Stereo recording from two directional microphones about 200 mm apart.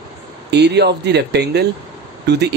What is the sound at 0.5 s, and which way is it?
Speech, 55° right (ahead or behind).